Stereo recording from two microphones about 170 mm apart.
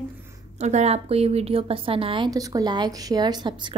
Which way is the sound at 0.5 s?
40° right (ahead or behind).